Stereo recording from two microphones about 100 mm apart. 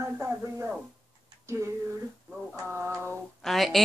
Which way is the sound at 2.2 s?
5° right (ahead or behind).